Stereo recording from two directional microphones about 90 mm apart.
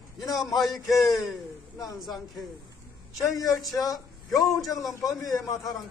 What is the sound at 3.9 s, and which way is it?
A man's voice, centre (ahead or behind).